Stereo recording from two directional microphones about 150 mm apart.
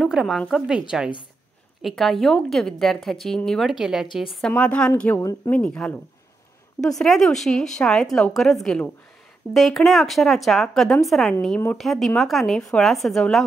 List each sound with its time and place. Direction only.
0.0 s a woman's voice: centre (ahead or behind)
5.1 s speech: 20° left (ahead or behind)
5.6 s a woman's voice: 5° left (ahead or behind)